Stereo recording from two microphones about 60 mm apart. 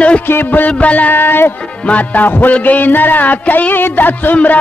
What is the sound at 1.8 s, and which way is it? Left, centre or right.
Music, left.